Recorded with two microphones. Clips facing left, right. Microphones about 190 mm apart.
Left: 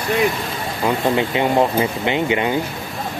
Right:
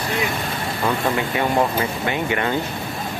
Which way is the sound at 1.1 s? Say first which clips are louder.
Left 3 dB; 20° left (ahead or behind).